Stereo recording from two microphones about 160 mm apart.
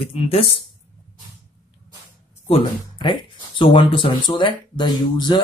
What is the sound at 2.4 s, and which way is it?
Speech, 35° left (ahead or behind).